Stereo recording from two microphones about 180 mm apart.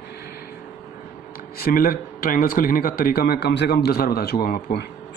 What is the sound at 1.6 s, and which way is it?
Speech, 55° left (ahead or behind).